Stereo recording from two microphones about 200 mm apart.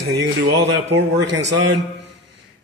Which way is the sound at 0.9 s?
60° right (ahead or behind).